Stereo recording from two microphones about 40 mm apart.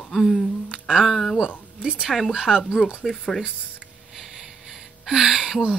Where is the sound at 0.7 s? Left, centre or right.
Centre.